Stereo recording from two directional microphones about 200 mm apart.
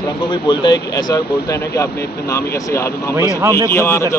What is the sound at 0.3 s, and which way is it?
Speech, 20° left (ahead or behind).